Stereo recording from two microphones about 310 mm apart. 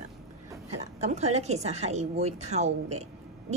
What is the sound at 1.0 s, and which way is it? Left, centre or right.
A woman's voice, right.